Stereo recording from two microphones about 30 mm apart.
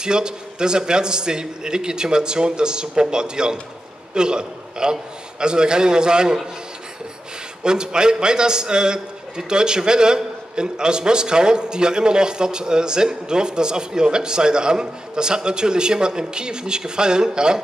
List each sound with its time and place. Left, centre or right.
0.0 s a man's voice: right
7.6 s a man's voice: right